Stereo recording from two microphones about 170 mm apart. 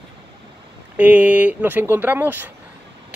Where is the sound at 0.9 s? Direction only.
10° right (ahead or behind).